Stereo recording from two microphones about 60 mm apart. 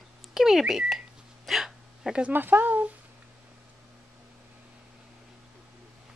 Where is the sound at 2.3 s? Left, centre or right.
Right.